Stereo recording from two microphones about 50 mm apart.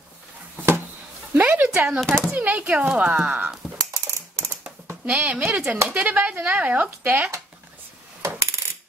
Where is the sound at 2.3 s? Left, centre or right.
Right.